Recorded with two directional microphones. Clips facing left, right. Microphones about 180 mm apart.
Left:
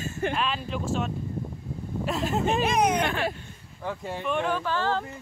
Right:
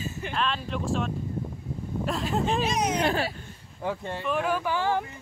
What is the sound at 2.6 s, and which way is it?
Speech, 55° left (ahead or behind).